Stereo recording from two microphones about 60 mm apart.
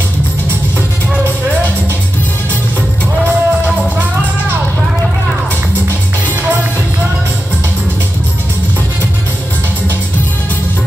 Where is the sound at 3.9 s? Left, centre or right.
Right.